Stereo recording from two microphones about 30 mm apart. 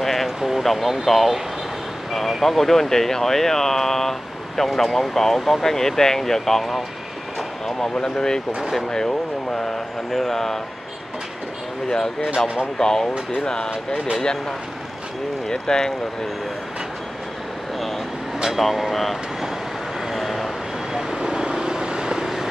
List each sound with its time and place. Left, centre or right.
0.0 s a sound: centre
0.6 s speech: centre
8.0 s speech: left
12.7 s speech: centre
15.4 s speech: left
18.6 s speech: centre
20.1 s vehicle: centre
21.1 s vehicle: right
22.2 s vehicle: centre